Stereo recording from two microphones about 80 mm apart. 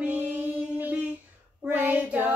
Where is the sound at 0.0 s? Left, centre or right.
Centre.